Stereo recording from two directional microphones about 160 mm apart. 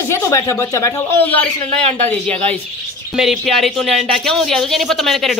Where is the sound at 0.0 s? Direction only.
15° left (ahead or behind).